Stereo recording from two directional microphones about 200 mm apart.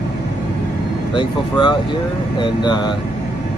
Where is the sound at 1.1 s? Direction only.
20° left (ahead or behind).